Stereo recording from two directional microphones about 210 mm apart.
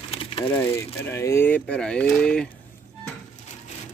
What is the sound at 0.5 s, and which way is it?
Speech, 10° left (ahead or behind).